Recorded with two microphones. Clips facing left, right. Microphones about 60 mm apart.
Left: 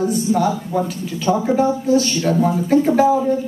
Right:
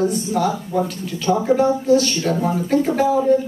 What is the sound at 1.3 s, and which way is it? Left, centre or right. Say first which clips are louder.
Speech: left 1 dB; left.